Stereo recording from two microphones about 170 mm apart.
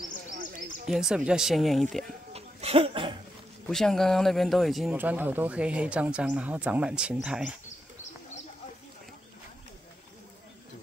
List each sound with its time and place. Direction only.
0.8 s speech: 5° right (ahead or behind)
2.3 s a sound: 35° right (ahead or behind)
3.6 s speech: centre (ahead or behind)